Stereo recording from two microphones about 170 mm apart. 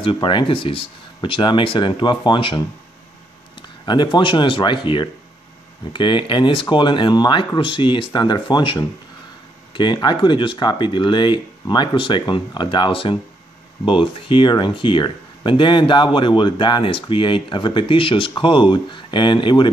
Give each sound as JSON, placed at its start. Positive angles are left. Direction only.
{"t": 0.0, "sound": "speech", "side_deg": 30}
{"t": 3.6, "sound": "speech", "side_deg": 25}